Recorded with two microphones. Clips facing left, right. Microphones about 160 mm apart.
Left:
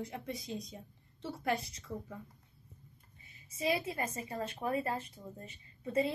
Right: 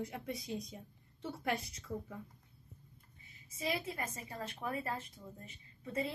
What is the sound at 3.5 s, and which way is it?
A woman's voice, 20° left (ahead or behind).